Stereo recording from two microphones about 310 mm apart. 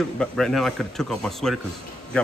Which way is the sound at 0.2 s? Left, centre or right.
Centre.